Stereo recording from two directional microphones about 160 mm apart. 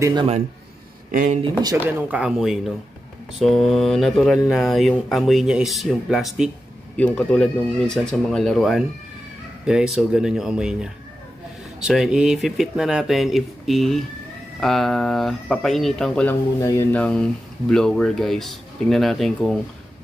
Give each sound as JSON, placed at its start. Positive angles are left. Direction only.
{"t": 0.0, "sound": "a man's voice", "side_deg": -30}
{"t": 1.1, "sound": "speech", "side_deg": -50}
{"t": 1.8, "sound": "speech", "side_deg": -10}
{"t": 7.0, "sound": "speech", "side_deg": 10}
{"t": 16.6, "sound": "speech", "side_deg": 20}
{"t": 16.9, "sound": "speech", "side_deg": 5}